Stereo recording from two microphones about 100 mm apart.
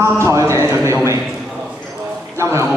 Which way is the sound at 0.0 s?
30° right (ahead or behind).